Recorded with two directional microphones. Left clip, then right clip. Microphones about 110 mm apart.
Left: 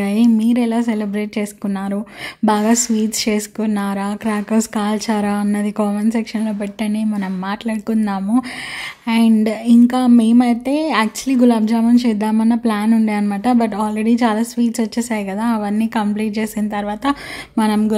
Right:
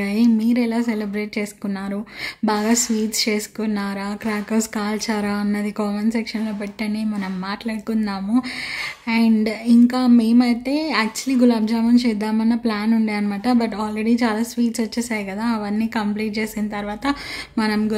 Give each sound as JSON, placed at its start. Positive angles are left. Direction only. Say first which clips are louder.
{"t": 0.0, "sound": "speech", "louder": "left 3 dB", "side_deg": 25}